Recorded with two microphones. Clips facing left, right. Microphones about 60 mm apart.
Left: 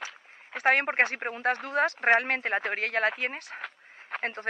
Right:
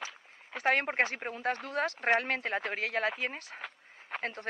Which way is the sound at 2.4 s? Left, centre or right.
Left.